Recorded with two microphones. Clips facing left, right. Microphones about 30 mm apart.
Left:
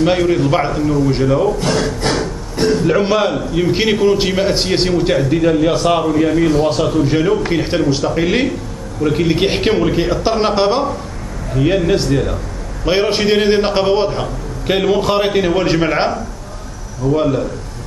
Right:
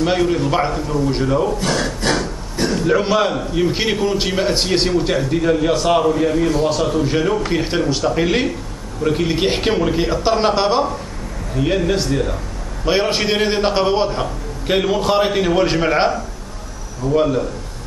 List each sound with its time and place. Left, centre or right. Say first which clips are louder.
0.0 s a man's voice: left 3 dB; centre
2.8 s a man's voice: right 1 dB; centre
6.3 s a man's voice: left 3 dB; left; by 17.5 s centre